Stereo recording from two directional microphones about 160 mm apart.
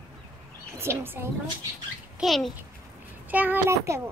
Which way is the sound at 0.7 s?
15° right (ahead or behind).